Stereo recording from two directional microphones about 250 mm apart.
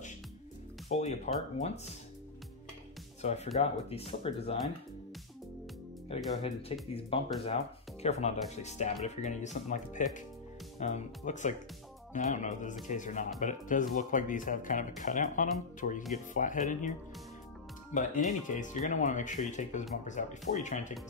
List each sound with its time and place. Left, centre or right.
0.8 s speech: left
3.2 s speech: left
6.0 s speech: left
17.9 s speech: left